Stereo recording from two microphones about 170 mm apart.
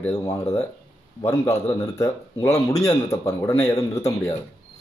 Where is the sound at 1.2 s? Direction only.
20° left (ahead or behind).